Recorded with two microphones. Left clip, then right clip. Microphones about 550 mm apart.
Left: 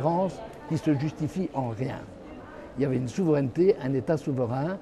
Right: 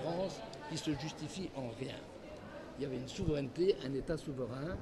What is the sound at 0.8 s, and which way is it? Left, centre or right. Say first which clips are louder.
Speech: left 14 dB; left.